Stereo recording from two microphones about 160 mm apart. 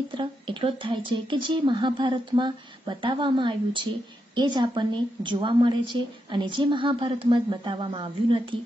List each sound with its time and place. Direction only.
0.2 s a woman's voice: 30° right (ahead or behind)